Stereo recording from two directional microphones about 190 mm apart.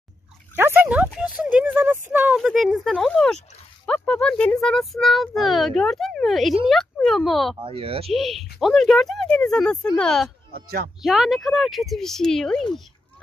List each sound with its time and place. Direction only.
0.6 s a sound: 10° right (ahead or behind)
3.8 s a child's voice: 5° left (ahead or behind)
7.5 s speech: 30° right (ahead or behind)
8.1 s a child's voice: centre (ahead or behind)
10.5 s speech: 50° right (ahead or behind)
11.0 s a child's voice: centre (ahead or behind)